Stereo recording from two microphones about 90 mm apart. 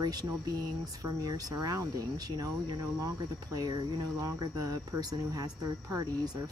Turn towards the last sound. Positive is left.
turn(degrees=-45)  # may be behind; listen again after turning